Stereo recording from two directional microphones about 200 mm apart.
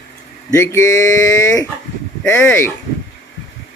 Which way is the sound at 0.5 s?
15° left (ahead or behind).